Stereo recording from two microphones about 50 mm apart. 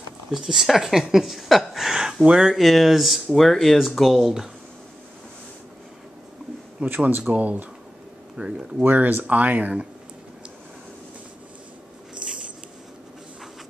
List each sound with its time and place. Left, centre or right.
0.3 s a woman's voice: centre
2.5 s a woman's voice: centre
6.8 s a man's voice: right
8.4 s speech: centre
8.8 s speech: right